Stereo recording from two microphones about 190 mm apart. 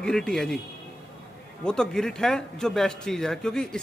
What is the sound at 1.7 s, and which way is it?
Speech, 5° left (ahead or behind).